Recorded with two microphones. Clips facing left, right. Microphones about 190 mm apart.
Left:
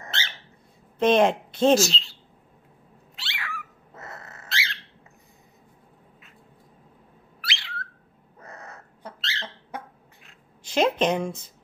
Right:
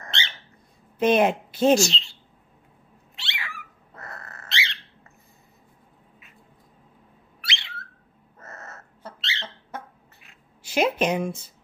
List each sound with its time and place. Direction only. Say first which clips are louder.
0.1 s dog: right 1 dB; 5° left (ahead or behind)
0.9 s speech: even; 5° right (ahead or behind)
3.2 s cat: left 1 dB; centre (ahead or behind)
3.9 s dog: even; 20° left (ahead or behind)
4.5 s bird: right 1 dB; centre (ahead or behind)
7.4 s a sound: left 1 dB; centre (ahead or behind)
8.4 s crow: even; 15° left (ahead or behind)
9.2 s a sound: even; centre (ahead or behind)
9.7 s cough: even; 15° left (ahead or behind)
10.6 s speech: left 1 dB; 5° right (ahead or behind)